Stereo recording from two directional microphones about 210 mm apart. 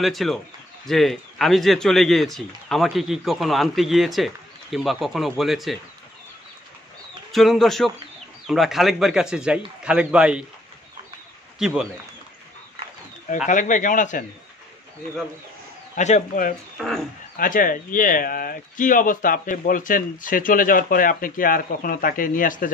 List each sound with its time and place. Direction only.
0.0 s speech: centre (ahead or behind)
7.3 s speech: centre (ahead or behind)
11.5 s a man's voice: centre (ahead or behind)
13.5 s speech: 40° left (ahead or behind)
16.0 s speech: 35° left (ahead or behind)
16.7 s speech: centre (ahead or behind)
17.4 s speech: 40° left (ahead or behind)